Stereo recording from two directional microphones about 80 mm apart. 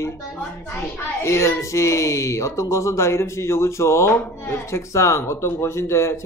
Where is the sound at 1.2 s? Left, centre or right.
Left.